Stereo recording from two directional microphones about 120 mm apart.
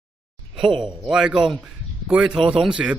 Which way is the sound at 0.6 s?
45° right (ahead or behind).